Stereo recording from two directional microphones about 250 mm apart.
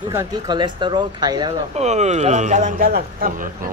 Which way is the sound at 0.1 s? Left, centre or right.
Centre.